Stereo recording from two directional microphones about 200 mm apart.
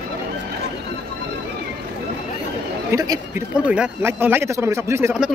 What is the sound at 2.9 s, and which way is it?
Speech, 15° right (ahead or behind).